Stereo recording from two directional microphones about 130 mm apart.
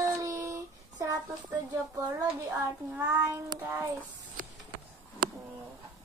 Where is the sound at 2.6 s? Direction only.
15° right (ahead or behind).